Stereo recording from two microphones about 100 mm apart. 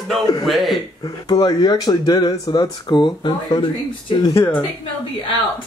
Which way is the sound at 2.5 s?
50° left (ahead or behind).